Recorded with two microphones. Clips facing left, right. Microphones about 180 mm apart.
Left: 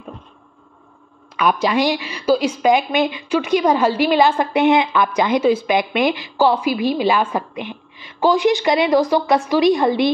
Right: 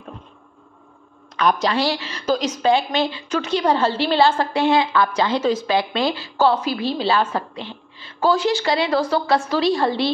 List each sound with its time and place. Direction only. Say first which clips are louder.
1.3 s a woman's voice: left 2 dB; 10° left (ahead or behind)